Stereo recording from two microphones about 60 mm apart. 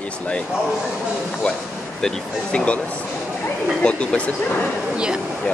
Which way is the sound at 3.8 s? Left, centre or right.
Centre.